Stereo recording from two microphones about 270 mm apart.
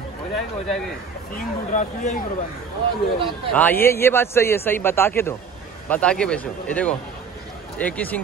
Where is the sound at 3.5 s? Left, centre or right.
Centre.